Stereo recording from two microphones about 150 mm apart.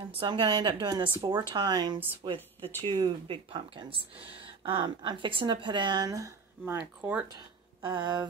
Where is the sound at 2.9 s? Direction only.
30° right (ahead or behind); by 7.2 s 10° right (ahead or behind).